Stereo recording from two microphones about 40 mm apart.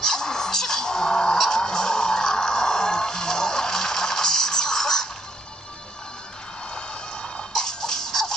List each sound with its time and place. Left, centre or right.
0.0 s music: centre
6.7 s music: left